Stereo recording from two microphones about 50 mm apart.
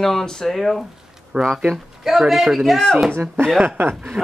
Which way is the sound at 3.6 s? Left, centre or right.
Right.